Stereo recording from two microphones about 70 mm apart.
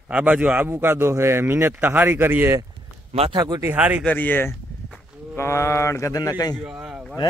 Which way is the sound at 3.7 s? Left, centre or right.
Right.